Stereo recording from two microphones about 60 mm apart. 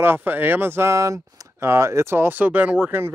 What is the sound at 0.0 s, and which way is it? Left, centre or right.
Speech, right.